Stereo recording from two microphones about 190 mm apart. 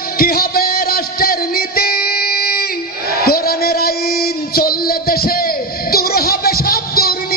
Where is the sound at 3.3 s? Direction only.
55° left (ahead or behind).